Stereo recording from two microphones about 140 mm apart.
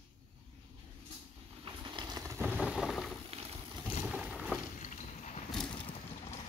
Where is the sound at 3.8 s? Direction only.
10° right (ahead or behind).